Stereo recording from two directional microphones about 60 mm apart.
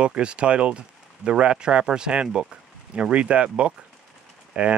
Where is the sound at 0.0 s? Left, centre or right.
Centre.